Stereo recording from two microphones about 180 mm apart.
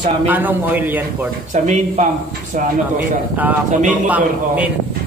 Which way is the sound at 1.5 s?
40° right (ahead or behind).